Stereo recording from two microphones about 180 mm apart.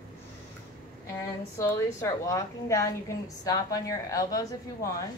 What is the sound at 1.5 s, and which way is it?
A woman's voice, 15° left (ahead or behind).